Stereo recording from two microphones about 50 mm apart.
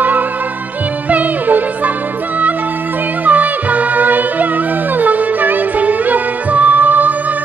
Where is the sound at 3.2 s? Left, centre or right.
Right.